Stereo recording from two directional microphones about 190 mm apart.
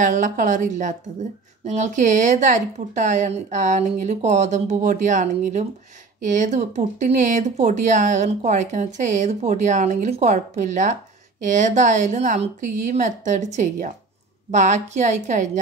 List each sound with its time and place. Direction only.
0.0 s speech: 40° right (ahead or behind)